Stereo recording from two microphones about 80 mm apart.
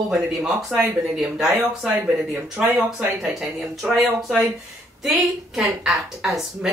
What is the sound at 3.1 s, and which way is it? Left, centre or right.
A woman's voice, centre.